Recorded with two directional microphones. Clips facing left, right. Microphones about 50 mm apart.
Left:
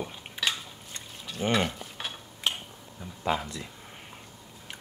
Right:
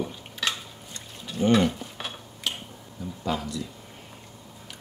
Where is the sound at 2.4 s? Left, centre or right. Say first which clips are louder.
Left 1 dB; left.